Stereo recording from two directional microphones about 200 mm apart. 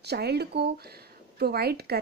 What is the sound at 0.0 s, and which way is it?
Speech, 55° right (ahead or behind).